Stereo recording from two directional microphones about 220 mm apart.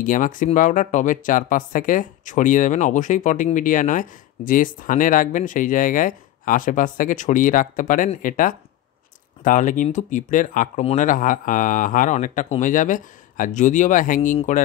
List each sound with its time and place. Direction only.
0.0 s speech: 40° left (ahead or behind)